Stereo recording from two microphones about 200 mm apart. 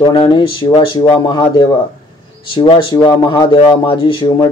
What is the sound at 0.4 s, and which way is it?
Speech, 20° left (ahead or behind).